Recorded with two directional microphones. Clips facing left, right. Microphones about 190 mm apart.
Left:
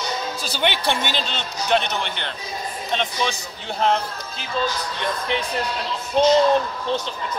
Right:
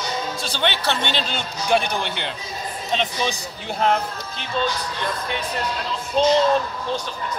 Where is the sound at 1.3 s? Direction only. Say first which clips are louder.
Right 1 dB; 10° right (ahead or behind).